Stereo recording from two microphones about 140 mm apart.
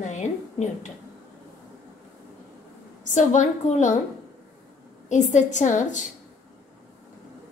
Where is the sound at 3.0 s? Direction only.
60° left (ahead or behind).